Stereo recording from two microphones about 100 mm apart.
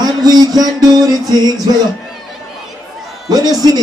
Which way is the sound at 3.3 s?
40° right (ahead or behind).